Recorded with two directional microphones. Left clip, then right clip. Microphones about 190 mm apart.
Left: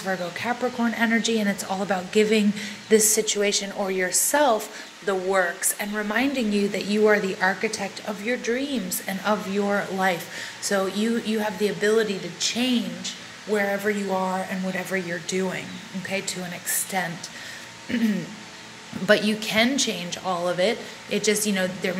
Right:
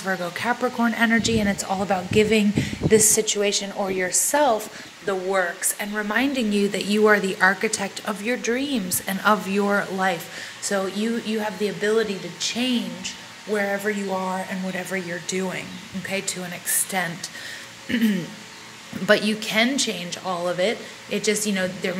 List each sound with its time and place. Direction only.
0.0 s a woman's voice: 15° right (ahead or behind)
10.6 s a woman's voice: centre (ahead or behind); by 18.1 s 20° right (ahead or behind)
19.0 s a woman's voice: 10° right (ahead or behind)